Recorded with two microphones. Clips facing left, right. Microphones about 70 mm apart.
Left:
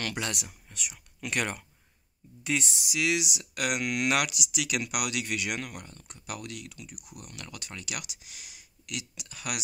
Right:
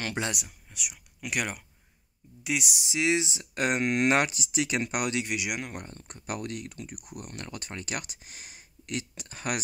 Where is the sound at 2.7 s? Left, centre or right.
Right.